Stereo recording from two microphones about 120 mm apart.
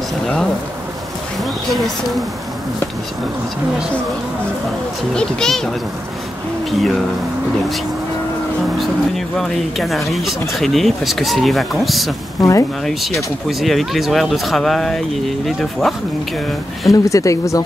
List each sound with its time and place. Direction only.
1.4 s speech: centre (ahead or behind)
5.1 s speech: 5° left (ahead or behind)
6.7 s speech: centre (ahead or behind)
8.7 s speech: centre (ahead or behind)
12.4 s speech: 30° left (ahead or behind)
12.8 s speech: centre (ahead or behind)
16.9 s speech: 30° left (ahead or behind)